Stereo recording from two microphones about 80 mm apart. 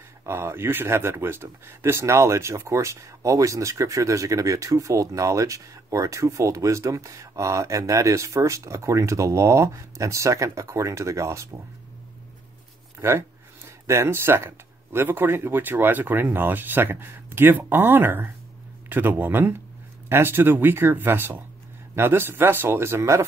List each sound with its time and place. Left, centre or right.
0.2 s speech: right
13.7 s speech: right